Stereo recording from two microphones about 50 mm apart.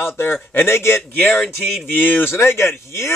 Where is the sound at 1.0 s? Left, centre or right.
Left.